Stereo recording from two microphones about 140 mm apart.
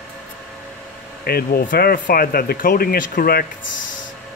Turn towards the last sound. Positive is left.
turn(degrees=90)